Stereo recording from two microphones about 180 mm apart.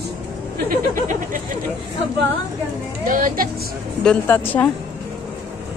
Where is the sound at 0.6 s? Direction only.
45° right (ahead or behind).